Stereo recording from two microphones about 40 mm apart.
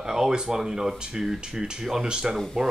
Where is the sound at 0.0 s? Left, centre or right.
Centre.